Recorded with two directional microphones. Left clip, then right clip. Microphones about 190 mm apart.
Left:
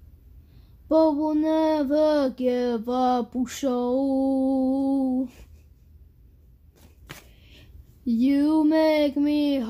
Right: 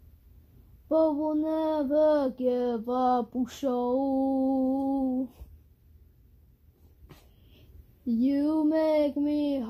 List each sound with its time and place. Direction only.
0.8 s speech: 15° left (ahead or behind)
8.0 s speech: 15° left (ahead or behind)